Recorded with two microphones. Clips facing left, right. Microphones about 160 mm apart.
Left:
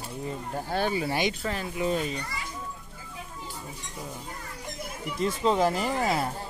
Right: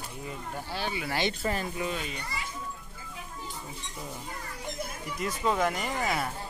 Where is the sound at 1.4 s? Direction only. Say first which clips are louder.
Right 1 dB; 5° right (ahead or behind).